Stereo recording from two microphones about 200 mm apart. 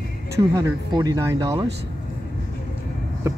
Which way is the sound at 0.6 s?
20° right (ahead or behind).